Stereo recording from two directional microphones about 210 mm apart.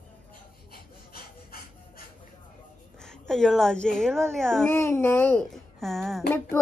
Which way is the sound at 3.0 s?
Centre (ahead or behind).